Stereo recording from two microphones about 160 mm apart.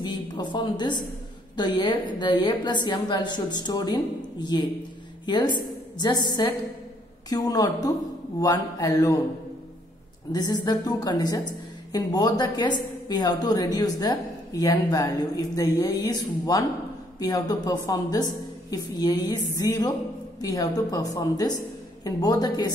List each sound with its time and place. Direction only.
0.0 s a woman's voice: 30° left (ahead or behind)
10.3 s a woman's voice: 25° left (ahead or behind)